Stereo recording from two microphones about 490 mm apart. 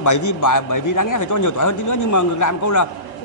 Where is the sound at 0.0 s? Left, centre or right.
Left.